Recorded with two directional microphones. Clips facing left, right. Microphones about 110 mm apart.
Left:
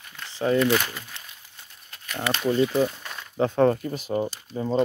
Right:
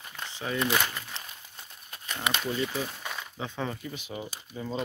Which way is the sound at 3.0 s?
5° right (ahead or behind).